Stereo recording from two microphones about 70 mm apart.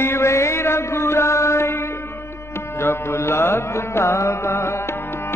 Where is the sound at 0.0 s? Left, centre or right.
Left.